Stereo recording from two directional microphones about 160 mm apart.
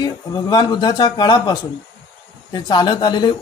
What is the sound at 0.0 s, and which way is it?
A man's voice, 25° left (ahead or behind).